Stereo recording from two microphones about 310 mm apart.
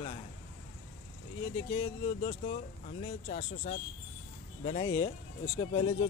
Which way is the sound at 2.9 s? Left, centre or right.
Left.